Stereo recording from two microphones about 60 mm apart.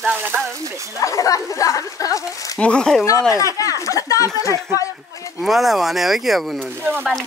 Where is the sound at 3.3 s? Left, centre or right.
Left.